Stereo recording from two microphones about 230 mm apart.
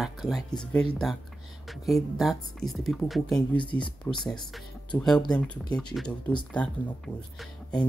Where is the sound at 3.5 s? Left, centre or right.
Left.